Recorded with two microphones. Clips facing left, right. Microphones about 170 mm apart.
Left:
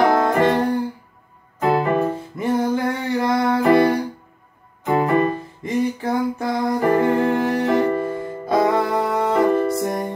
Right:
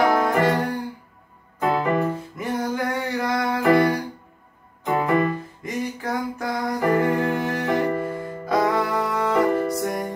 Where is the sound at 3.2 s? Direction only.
25° left (ahead or behind).